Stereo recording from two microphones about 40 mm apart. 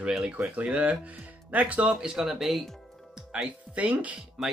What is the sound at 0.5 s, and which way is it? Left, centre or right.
Speech, right.